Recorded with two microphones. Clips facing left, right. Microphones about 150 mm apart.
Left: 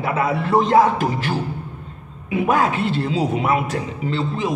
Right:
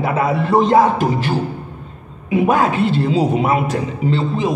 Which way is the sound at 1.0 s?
30° right (ahead or behind).